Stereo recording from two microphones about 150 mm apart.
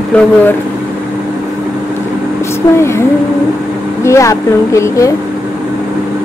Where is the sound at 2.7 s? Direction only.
20° left (ahead or behind).